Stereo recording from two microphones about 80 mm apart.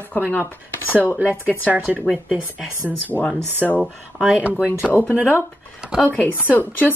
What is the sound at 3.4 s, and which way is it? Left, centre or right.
Speech, right.